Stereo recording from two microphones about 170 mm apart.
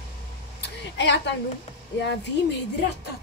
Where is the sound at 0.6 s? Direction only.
85° left.